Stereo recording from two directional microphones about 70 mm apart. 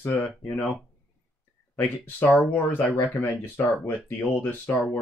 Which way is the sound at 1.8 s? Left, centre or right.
Left.